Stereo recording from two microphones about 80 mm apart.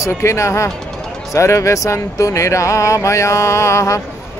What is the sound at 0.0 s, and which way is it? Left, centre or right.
Speech, left.